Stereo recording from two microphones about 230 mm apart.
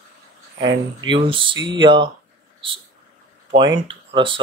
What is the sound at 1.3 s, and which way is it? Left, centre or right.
Speech, right.